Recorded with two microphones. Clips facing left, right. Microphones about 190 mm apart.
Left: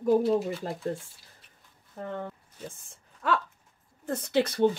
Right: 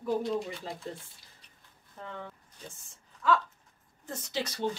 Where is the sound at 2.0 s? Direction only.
50° left (ahead or behind).